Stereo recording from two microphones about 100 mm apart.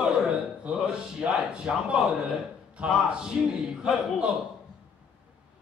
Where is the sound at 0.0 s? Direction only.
10° right (ahead or behind).